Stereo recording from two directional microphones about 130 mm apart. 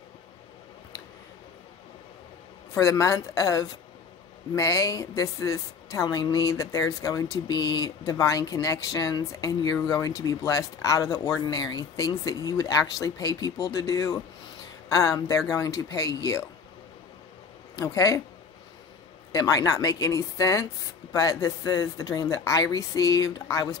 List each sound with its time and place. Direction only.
2.7 s a woman's voice: 25° left (ahead or behind)
17.7 s a woman's voice: 25° left (ahead or behind)
19.3 s a woman's voice: 25° left (ahead or behind)